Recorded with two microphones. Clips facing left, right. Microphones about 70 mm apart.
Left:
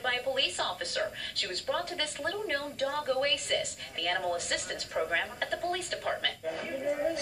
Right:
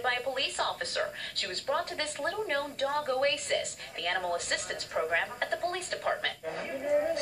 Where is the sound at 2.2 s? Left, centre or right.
Centre.